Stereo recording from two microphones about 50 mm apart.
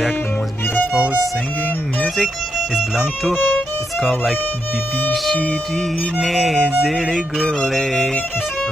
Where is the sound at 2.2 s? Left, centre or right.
Centre.